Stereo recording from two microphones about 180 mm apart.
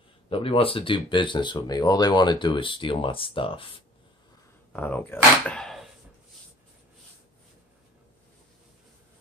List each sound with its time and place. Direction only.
0.3 s speech: 30° left (ahead or behind)
4.7 s speech: 10° left (ahead or behind)